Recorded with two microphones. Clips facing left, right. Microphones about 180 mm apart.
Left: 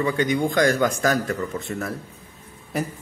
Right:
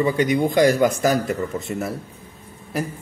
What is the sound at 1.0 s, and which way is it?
Speech, 5° right (ahead or behind).